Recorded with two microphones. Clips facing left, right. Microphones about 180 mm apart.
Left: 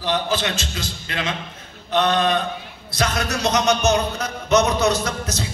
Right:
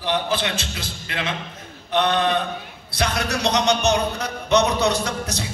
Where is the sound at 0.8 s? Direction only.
20° right (ahead or behind).